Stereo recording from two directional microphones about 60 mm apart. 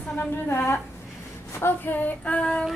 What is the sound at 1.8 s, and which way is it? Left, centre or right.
Child singing, left.